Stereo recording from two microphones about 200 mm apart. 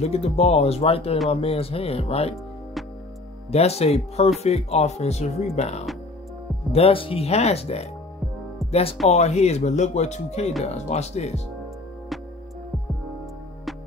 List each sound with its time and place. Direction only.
0.0 s speech: 30° left (ahead or behind)
3.5 s speech: 30° left (ahead or behind)
9.1 s speech: 35° left (ahead or behind)